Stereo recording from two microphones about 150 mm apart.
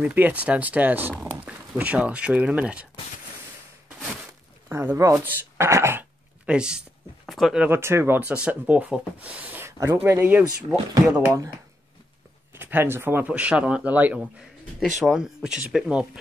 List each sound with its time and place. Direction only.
0.0 s speech: 10° right (ahead or behind)
4.6 s a sound: 15° right (ahead or behind)
7.2 s speech: centre (ahead or behind); by 11.2 s 25° right (ahead or behind)
12.5 s speech: 15° right (ahead or behind)